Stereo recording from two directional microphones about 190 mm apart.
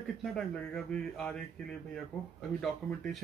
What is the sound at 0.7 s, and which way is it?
Speech, 5° left (ahead or behind).